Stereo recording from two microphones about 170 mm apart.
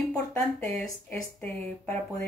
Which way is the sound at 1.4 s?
40° right (ahead or behind).